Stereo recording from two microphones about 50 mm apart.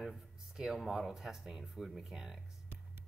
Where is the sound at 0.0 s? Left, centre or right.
Centre.